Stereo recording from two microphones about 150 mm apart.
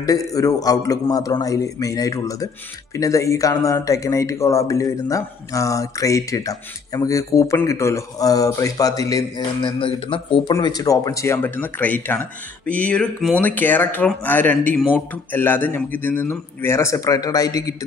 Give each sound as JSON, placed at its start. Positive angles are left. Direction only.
{"t": 0.0, "sound": "speech", "side_deg": 25}